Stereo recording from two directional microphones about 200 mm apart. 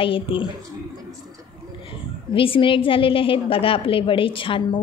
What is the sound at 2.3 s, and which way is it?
A woman's voice, 25° left (ahead or behind).